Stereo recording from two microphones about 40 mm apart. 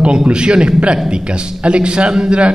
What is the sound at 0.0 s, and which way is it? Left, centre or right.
A man's voice, right.